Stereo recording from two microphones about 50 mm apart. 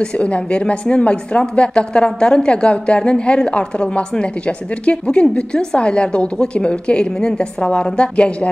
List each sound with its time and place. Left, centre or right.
0.0 s speech: left